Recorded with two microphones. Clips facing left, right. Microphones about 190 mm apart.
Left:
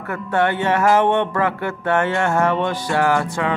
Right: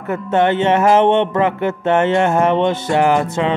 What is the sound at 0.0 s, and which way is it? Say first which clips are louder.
Music: right 4 dB; 20° right (ahead or behind).